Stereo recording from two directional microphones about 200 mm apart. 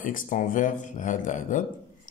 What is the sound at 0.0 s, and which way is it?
Speech, 40° left (ahead or behind).